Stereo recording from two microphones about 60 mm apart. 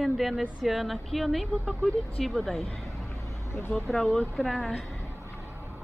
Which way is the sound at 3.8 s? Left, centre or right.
Centre.